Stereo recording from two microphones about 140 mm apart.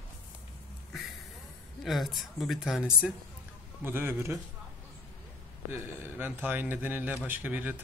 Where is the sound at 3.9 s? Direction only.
15° right (ahead or behind).